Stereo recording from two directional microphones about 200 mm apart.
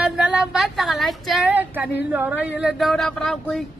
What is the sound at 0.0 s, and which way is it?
Female singing, 5° right (ahead or behind).